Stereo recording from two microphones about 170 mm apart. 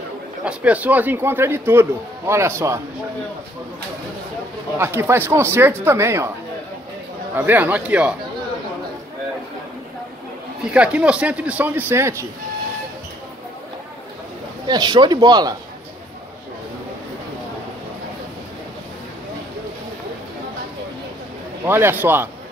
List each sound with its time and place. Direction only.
0.5 s a man's voice: 10° right (ahead or behind)
4.7 s a man's voice: 15° right (ahead or behind)
7.3 s a man's voice: 10° right (ahead or behind)
10.6 s a man's voice: 5° right (ahead or behind)
14.7 s speech: 25° right (ahead or behind)
21.6 s a man's voice: 15° right (ahead or behind)